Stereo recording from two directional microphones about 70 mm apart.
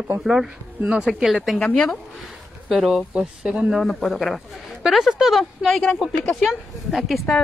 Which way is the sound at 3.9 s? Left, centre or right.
Centre.